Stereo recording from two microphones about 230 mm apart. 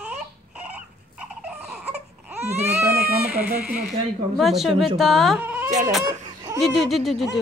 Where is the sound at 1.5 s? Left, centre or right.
Centre.